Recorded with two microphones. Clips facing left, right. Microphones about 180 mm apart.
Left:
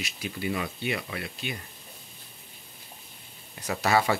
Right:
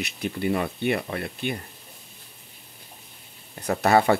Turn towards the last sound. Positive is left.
turn(degrees=-55)  # may be behind; listen again after turning